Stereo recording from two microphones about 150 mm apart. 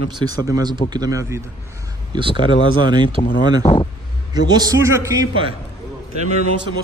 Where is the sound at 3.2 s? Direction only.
30° left (ahead or behind).